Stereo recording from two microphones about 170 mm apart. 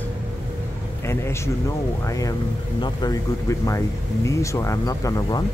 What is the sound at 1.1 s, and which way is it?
Speech, 15° left (ahead or behind).